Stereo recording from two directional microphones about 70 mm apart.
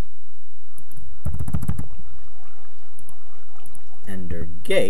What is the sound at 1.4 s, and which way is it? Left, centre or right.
Vehicle, centre.